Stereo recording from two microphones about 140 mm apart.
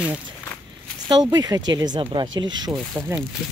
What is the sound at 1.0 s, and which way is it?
Speech, 30° right (ahead or behind).